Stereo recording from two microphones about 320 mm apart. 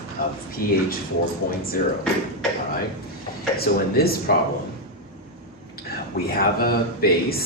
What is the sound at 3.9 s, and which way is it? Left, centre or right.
Speech, left.